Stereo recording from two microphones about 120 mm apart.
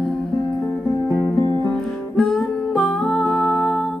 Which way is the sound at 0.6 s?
30° left (ahead or behind).